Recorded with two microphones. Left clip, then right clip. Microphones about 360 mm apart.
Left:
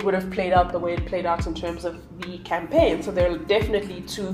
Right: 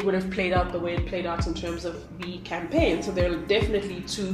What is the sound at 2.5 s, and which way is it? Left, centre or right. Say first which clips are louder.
Speech: left 5 dB; left.